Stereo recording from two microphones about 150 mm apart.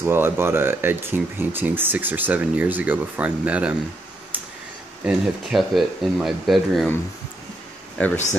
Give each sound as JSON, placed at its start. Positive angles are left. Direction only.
{"t": 0.0, "sound": "speech", "side_deg": -15}
{"t": 5.0, "sound": "speech", "side_deg": 0}
{"t": 8.0, "sound": "speech", "side_deg": 10}